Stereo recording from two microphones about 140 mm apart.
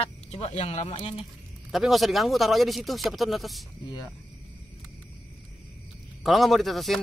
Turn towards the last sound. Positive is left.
turn(degrees=0)  # may be behind; listen again after turning